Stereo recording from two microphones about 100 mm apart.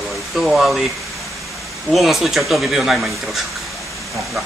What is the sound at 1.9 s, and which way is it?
A man's voice, centre (ahead or behind).